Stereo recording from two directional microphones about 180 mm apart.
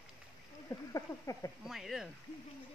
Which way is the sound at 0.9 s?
20° left (ahead or behind).